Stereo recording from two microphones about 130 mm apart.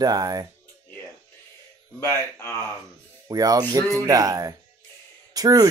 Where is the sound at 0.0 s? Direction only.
30° right (ahead or behind).